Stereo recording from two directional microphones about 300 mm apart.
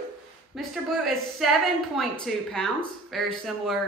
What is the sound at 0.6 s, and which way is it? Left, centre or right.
Speech, centre.